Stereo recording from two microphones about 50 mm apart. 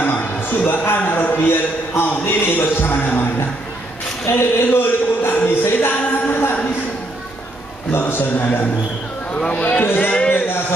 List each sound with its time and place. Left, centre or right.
0.0 s a sound: left
1.2 s speech: left
1.5 s a man's voice: left
5.6 s music: left
8.1 s a man's voice: left
9.5 s speech: left
10.3 s music: left